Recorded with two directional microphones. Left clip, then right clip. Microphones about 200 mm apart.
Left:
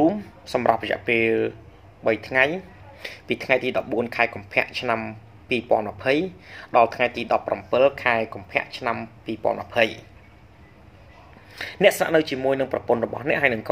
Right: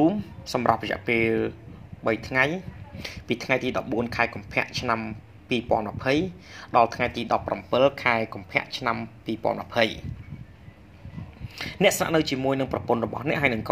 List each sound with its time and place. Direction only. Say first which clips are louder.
0.0 s speech: left 2 dB; 5° right (ahead or behind); by 9.9 s 25° right (ahead or behind)
11.5 s speech: left 4 dB; 15° right (ahead or behind)